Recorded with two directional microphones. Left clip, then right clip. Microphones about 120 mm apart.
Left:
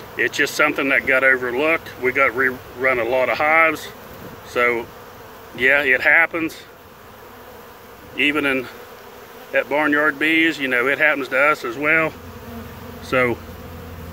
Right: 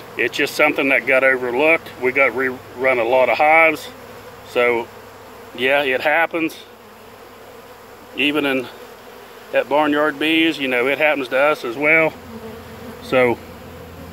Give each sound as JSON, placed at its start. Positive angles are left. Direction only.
{"t": 0.1, "sound": "speech", "side_deg": -25}
{"t": 8.2, "sound": "speech", "side_deg": -25}
{"t": 13.0, "sound": "bee", "side_deg": -20}